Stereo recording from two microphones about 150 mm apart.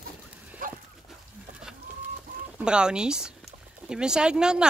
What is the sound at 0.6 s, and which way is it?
Dog, 70° right (ahead or behind).